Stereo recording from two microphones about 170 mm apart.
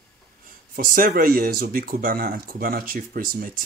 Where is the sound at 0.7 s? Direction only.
55° right (ahead or behind).